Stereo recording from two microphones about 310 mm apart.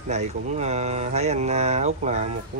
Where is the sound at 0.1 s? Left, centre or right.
Right.